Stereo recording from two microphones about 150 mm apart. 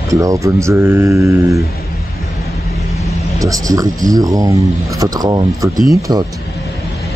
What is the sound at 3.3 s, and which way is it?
Speech, 20° right (ahead or behind).